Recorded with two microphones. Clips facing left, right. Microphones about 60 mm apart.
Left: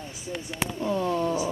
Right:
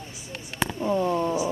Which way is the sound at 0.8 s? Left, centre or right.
Centre.